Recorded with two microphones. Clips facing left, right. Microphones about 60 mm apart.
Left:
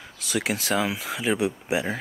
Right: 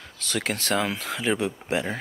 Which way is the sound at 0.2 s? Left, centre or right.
Centre.